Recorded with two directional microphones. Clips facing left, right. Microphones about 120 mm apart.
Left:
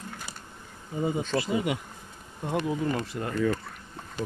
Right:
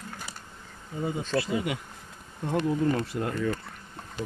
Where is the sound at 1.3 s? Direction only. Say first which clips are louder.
Left 1 dB; 20° left (ahead or behind).